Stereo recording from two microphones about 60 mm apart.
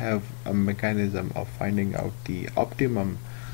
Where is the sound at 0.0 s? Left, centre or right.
Centre.